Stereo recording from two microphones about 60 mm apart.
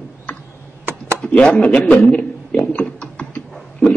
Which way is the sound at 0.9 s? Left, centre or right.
Right.